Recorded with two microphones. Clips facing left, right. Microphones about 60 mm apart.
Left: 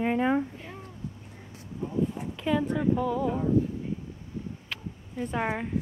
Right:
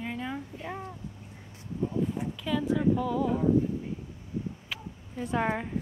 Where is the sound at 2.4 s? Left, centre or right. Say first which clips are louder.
Left 5 dB; left.